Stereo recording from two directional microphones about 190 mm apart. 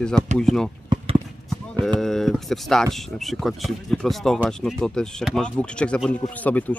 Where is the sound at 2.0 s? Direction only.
Centre (ahead or behind).